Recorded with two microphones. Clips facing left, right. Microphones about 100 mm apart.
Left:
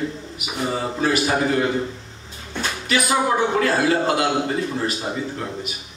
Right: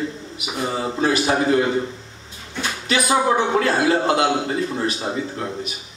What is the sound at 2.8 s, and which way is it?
A man's voice, 25° right (ahead or behind).